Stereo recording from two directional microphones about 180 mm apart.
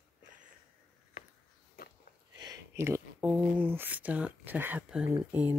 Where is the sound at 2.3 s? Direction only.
20° right (ahead or behind).